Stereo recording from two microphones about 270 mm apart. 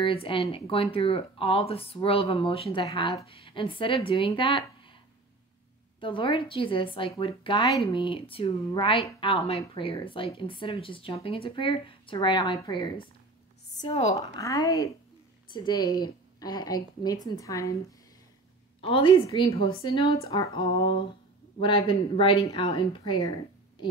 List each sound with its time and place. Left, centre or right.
0.0 s speech: centre
5.9 s a woman's voice: centre
18.8 s a woman's voice: centre